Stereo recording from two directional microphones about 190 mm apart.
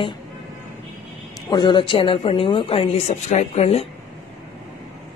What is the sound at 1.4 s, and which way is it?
Speech, 25° left (ahead or behind).